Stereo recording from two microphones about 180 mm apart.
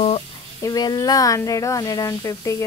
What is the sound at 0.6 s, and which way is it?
A woman's voice, 20° left (ahead or behind).